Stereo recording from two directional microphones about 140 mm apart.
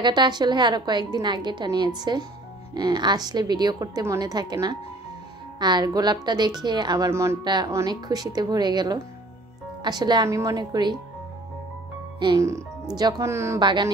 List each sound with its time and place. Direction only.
0.0 s a woman's voice: 30° right (ahead or behind)
7.1 s a woman's voice: 20° right (ahead or behind)
7.4 s a woman's voice: 30° right (ahead or behind)
12.2 s a woman's voice: 35° right (ahead or behind)
13.6 s a woman's voice: 30° right (ahead or behind)